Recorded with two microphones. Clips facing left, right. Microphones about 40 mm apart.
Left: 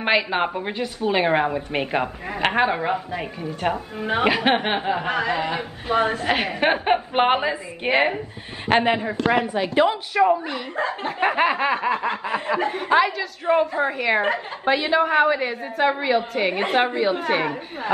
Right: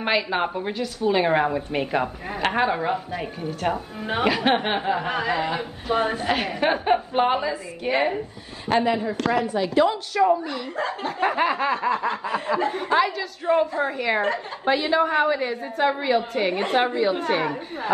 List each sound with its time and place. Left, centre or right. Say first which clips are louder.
0.0 s a woman's voice: left 2 dB; centre
2.6 s snicker: left 1 dB; centre
6.2 s a woman's voice: left 2 dB; centre; by 8.1 s left
8.6 s a man's voice: left 2 dB; left
9.8 s a woman's voice: left 1 dB; left
11.1 s snicker: left 2 dB; left
14.2 s a woman's voice: left 2 dB; left
14.7 s snicker: left 1 dB; centre